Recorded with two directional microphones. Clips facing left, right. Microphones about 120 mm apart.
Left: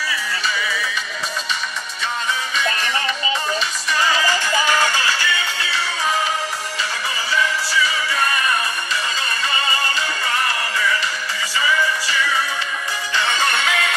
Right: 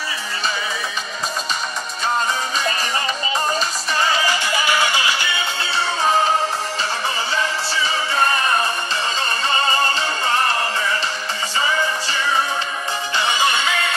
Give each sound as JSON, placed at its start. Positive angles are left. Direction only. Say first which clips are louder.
{"t": 2.5, "sound": "music", "louder": "even", "side_deg": -35}
{"t": 4.2, "sound": "music", "louder": "left 1 dB", "side_deg": -20}
{"t": 7.3, "sound": "music", "louder": "left 2 dB", "side_deg": -30}
{"t": 9.6, "sound": "music", "louder": "right 5 dB", "side_deg": -35}
{"t": 13.3, "sound": "music", "louder": "right 1 dB", "side_deg": -10}